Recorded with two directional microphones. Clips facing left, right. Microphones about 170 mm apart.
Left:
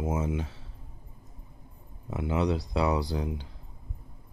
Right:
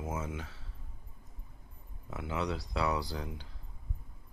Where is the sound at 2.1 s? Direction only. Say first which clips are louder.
Left 7 dB; 20° left (ahead or behind).